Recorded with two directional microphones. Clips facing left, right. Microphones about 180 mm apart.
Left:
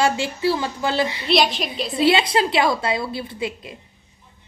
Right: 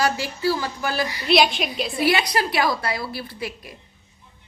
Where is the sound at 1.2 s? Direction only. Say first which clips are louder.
Right 3 dB; centre (ahead or behind).